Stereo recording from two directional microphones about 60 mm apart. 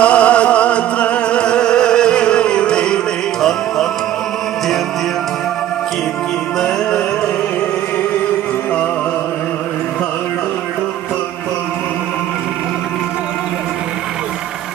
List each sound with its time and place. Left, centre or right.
0.0 s music: left